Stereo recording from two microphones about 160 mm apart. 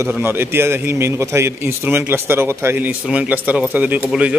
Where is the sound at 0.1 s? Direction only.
15° right (ahead or behind).